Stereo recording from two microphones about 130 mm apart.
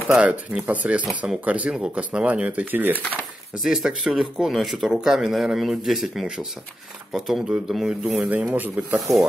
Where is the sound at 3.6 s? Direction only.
5° right (ahead or behind).